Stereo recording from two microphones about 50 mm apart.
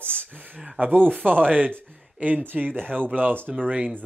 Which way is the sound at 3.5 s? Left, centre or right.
Centre.